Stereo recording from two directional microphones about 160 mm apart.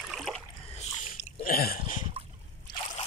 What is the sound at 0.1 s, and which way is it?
Rowboat, centre (ahead or behind).